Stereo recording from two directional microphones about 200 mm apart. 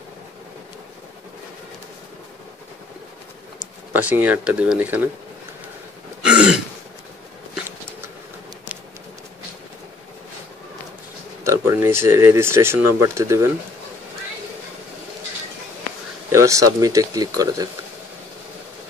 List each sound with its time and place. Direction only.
3.9 s speech: 10° right (ahead or behind)
6.2 s throat clearing: 5° right (ahead or behind)
11.4 s speech: 15° right (ahead or behind)
16.3 s speech: 15° right (ahead or behind)